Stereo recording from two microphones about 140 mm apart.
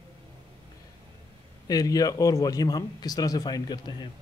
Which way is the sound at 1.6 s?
25° left (ahead or behind).